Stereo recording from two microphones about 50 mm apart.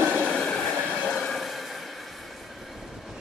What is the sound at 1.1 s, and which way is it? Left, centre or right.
Train, centre.